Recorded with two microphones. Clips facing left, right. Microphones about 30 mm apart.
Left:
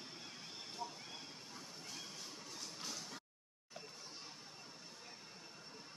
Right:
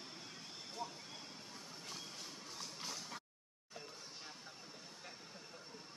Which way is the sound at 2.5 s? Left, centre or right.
Centre.